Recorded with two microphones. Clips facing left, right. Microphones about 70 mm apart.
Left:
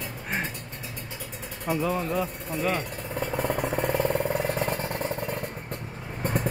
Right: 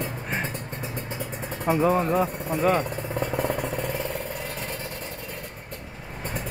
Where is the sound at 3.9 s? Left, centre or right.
Left.